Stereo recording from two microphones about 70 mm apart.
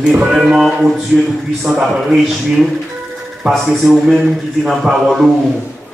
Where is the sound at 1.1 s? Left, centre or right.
Centre.